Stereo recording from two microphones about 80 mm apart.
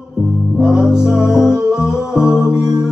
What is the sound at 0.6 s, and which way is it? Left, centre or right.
Music, centre.